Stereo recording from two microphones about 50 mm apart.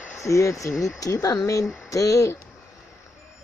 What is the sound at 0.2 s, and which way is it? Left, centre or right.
Speech, left.